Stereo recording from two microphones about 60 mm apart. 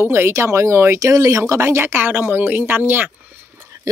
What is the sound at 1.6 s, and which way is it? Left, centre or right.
Speech, right.